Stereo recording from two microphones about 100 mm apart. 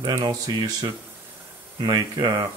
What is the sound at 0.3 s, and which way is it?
Speech, 40° right (ahead or behind).